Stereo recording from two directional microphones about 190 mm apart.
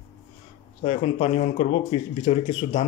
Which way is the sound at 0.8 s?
35° left (ahead or behind).